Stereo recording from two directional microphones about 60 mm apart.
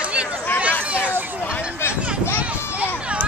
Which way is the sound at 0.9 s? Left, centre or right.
Right.